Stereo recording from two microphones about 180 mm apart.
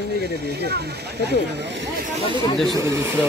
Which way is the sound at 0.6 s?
65° right (ahead or behind).